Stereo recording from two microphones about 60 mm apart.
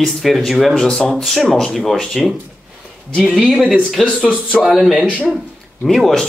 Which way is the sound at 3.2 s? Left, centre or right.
Centre.